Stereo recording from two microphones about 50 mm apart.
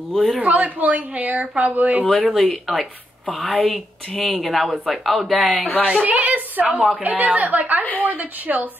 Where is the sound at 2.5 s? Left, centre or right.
Centre.